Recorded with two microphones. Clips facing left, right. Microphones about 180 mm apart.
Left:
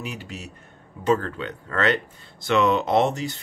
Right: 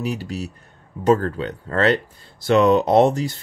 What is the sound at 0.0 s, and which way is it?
Speech, 35° right (ahead or behind).